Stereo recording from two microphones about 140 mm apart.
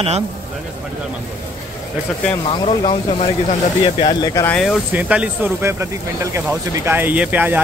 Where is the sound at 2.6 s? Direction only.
45° left (ahead or behind).